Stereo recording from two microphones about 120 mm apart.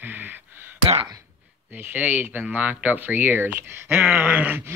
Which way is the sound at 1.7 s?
15° right (ahead or behind).